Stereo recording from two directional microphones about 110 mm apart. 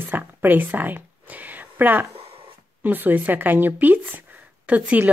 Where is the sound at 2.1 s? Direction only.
60° right (ahead or behind).